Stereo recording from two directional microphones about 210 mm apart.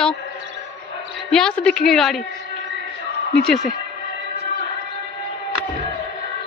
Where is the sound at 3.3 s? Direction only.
5° left (ahead or behind).